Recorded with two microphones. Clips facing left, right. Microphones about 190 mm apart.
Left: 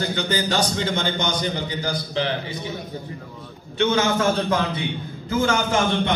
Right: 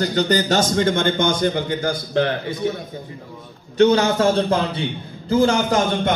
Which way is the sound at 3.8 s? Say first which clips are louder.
Right 5 dB; 35° right (ahead or behind).